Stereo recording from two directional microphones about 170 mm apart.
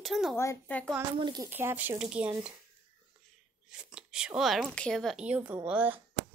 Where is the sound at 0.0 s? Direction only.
Centre (ahead or behind).